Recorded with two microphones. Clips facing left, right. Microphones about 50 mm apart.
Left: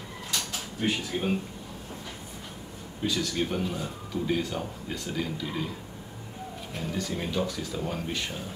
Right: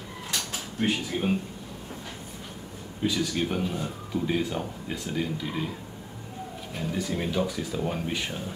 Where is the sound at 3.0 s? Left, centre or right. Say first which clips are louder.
Right 2 dB; centre.